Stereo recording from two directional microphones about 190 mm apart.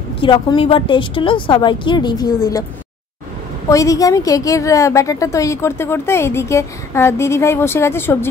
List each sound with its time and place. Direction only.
0.2 s a woman's voice: 25° left (ahead or behind)
3.6 s a woman's voice: 15° left (ahead or behind)